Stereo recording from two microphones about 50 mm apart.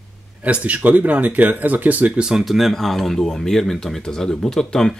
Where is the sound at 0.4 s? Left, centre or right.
Right.